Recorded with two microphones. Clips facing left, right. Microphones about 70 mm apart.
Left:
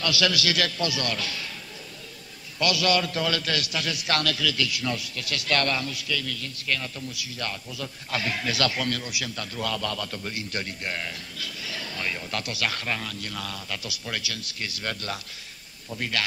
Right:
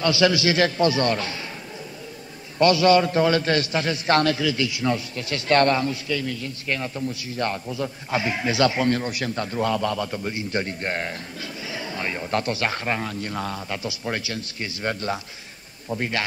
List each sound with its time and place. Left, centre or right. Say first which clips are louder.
0.0 s a man's voice: right 6 dB; right
2.6 s a man's voice: right 8 dB; right